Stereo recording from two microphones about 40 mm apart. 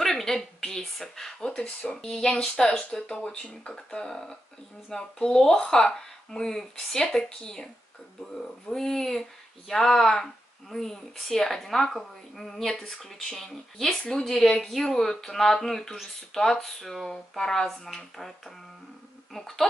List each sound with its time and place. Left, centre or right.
0.0 s a sound: centre
0.9 s speech: centre
8.7 s speech: centre
14.3 s speech: centre